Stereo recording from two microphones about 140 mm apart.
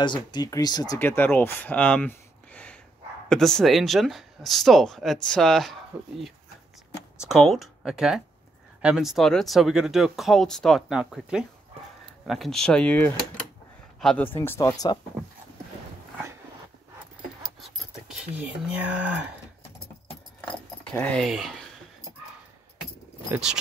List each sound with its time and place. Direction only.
0.0 s speech: 30° left (ahead or behind)
0.9 s speech: 15° left (ahead or behind)
7.2 s speech: 5° right (ahead or behind)
14.2 s speech: 15° left (ahead or behind)
17.6 s speech: centre (ahead or behind)
20.3 s speech: 10° left (ahead or behind)
23.3 s speech: 5° right (ahead or behind)